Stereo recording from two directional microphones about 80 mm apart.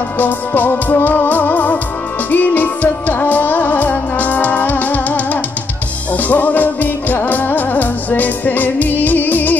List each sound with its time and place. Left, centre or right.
0.2 s music: left